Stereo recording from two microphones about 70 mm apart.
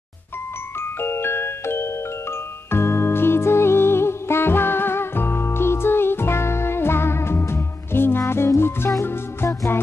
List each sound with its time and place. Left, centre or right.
0.7 s music: left